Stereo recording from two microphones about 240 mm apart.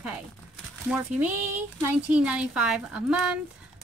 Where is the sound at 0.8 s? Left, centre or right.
Centre.